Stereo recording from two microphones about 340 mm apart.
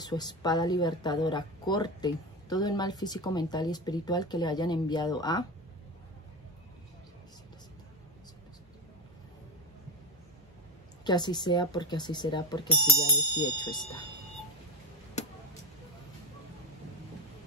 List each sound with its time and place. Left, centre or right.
0.0 s a woman's voice: centre
11.1 s a woman's voice: centre
15.2 s vehicle: centre